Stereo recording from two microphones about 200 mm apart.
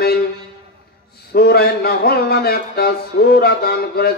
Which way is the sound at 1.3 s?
50° left (ahead or behind).